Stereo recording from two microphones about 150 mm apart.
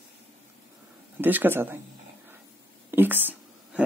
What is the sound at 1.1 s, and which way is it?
Speech, 10° right (ahead or behind).